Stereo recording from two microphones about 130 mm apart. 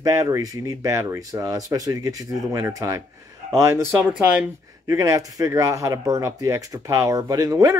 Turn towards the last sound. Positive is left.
turn(degrees=-25)  # may be behind; listen again after turning